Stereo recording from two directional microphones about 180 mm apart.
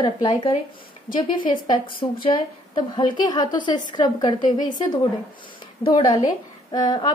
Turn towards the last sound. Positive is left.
turn(degrees=20)  # may be behind; listen again after turning